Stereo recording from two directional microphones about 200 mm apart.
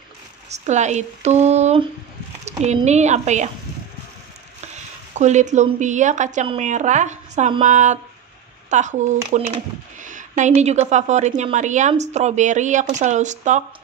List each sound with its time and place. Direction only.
0.5 s speech: 35° right (ahead or behind)
4.7 s speech: 35° right (ahead or behind)